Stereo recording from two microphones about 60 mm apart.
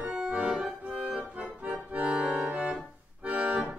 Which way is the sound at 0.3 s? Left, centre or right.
Right.